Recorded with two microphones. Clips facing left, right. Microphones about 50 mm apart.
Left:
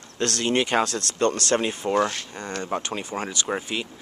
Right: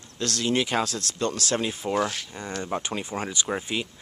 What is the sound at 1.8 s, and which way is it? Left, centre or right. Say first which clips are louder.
Speech: left 3 dB; centre.